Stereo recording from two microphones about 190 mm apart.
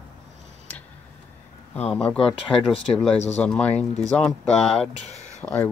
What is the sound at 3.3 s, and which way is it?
Speech, 5° left (ahead or behind).